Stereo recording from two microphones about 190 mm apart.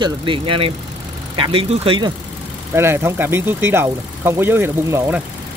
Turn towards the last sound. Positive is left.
turn(degrees=-10)  # may be behind; listen again after turning